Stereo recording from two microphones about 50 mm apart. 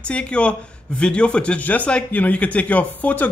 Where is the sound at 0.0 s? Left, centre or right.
Left.